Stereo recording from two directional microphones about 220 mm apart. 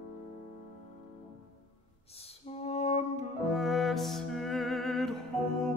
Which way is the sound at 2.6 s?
30° left (ahead or behind).